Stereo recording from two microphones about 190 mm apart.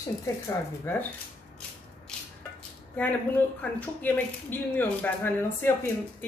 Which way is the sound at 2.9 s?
10° left (ahead or behind).